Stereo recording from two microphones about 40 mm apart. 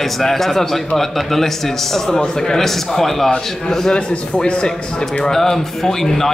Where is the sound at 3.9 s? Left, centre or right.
Left.